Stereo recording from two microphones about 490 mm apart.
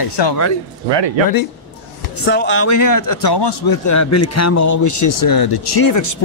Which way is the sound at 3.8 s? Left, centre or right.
Left.